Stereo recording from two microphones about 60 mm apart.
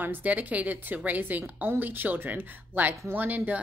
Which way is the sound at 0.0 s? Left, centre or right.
Right.